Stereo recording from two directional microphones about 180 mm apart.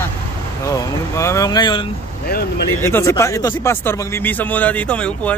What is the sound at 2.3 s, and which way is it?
Speech, 55° left (ahead or behind).